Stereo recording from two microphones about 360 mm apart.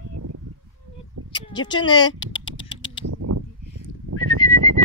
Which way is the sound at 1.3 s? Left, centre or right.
Centre.